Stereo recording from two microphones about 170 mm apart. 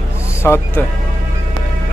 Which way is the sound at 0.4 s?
15° left (ahead or behind).